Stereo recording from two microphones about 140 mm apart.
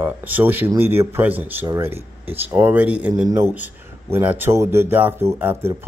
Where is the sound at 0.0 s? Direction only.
15° right (ahead or behind).